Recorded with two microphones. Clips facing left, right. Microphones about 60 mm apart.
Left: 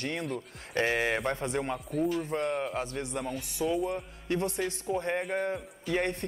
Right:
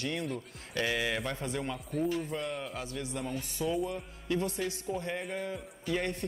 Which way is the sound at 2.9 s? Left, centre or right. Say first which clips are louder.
Left 2 dB; left.